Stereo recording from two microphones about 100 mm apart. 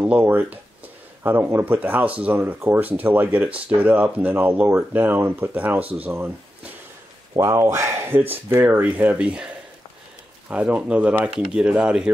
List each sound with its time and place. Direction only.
0.0 s speech: 20° right (ahead or behind)
7.3 s speech: 30° right (ahead or behind); by 9.5 s 10° right (ahead or behind)
10.5 s speech: 15° right (ahead or behind)